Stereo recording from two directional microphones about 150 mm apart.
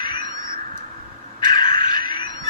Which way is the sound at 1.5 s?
30° left (ahead or behind).